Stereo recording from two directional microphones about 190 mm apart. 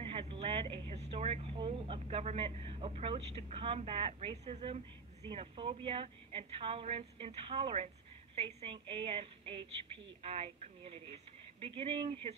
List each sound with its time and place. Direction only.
0.0 s speech: 30° right (ahead or behind)